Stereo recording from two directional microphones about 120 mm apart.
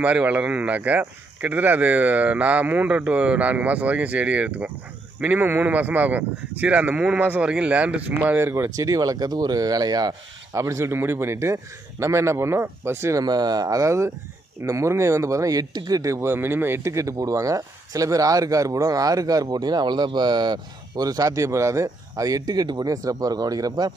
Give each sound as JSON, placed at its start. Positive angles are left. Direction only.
{"t": 0.0, "sound": "speech", "side_deg": -10}
{"t": 13.2, "sound": "speech", "side_deg": -35}